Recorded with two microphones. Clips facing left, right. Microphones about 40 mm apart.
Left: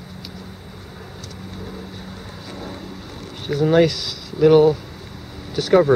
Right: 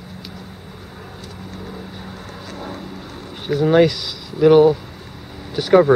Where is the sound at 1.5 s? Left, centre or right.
Centre.